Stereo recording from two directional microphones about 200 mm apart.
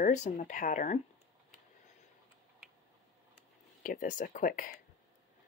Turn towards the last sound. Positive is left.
turn(degrees=45)  # may be behind; listen again after turning